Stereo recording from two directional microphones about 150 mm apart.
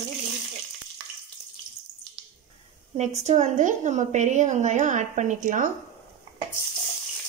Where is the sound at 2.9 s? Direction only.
50° right (ahead or behind).